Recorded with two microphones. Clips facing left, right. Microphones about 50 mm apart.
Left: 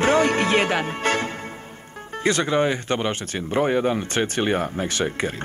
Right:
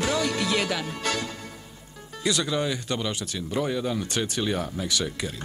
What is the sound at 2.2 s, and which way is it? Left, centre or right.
Speech, left.